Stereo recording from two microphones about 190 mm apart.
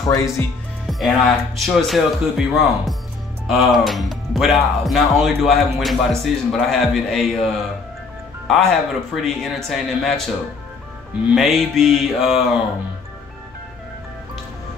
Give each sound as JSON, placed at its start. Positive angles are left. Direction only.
{"t": 0.8, "sound": "speech", "side_deg": 0}
{"t": 11.3, "sound": "speech", "side_deg": 0}